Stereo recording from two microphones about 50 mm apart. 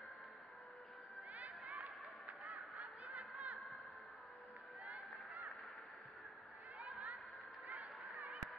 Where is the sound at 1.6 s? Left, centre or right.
Right.